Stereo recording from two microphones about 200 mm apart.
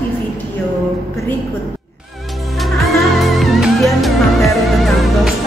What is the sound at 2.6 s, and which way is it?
Music, centre (ahead or behind).